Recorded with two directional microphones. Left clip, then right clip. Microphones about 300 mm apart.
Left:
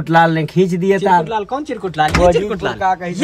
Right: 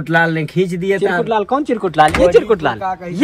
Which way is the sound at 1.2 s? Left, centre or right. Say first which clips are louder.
Right 4 dB; centre.